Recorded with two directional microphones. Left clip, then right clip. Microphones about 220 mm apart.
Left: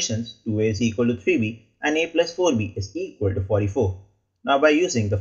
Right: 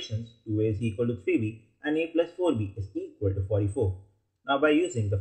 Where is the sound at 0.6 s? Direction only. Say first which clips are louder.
Left 6 dB; 5° left (ahead or behind).